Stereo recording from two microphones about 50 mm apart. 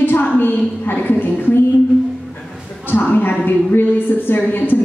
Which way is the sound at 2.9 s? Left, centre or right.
Left.